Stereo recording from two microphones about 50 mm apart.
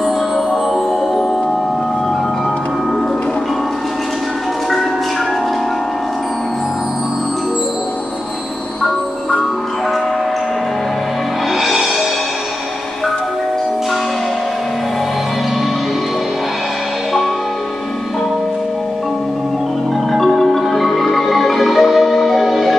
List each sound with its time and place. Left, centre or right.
11.6 s music: centre
20.1 s marimba: centre